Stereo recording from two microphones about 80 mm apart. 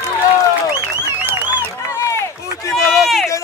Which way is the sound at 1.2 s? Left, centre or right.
Right.